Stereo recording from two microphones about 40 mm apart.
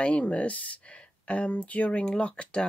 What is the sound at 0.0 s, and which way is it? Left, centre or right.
Speech, left.